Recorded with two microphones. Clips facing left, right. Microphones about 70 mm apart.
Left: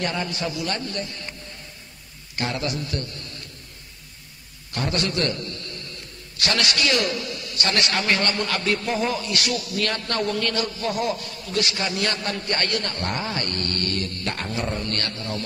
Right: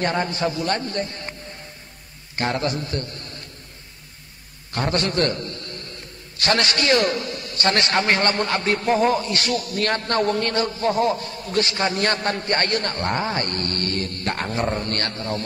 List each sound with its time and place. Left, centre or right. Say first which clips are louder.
0.0 s a man's voice: right 4 dB; right
2.3 s a man's voice: right 3 dB; right
4.7 s a man's voice: right 3 dB; right